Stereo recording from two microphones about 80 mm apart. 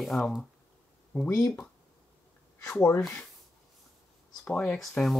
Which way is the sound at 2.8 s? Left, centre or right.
Left.